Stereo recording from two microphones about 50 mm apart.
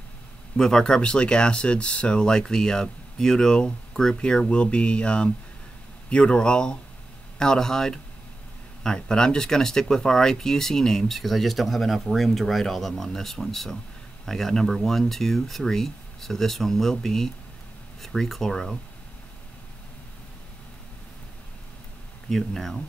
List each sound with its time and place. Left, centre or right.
0.6 s speech: centre
22.3 s speech: centre